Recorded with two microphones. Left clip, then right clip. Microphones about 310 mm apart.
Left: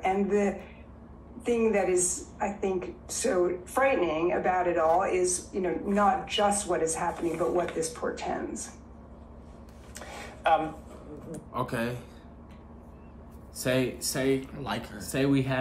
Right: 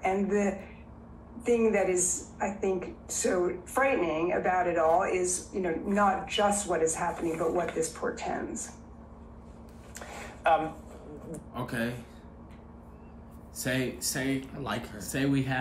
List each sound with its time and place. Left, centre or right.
0.0 s a woman's voice: centre
9.9 s a sound: centre
11.5 s a woman's voice: centre
13.6 s a woman's voice: centre
14.4 s speech: centre
15.0 s a woman's voice: centre